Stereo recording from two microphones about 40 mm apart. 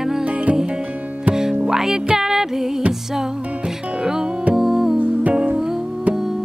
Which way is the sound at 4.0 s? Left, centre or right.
Centre.